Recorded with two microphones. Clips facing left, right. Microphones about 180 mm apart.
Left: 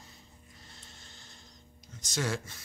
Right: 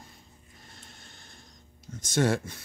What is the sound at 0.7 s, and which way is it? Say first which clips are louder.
Printer: right 3 dB; 55° right (ahead or behind).